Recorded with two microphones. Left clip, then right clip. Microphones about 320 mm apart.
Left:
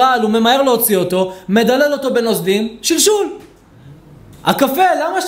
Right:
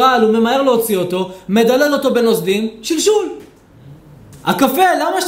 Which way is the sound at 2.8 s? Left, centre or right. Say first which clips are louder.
Even; left.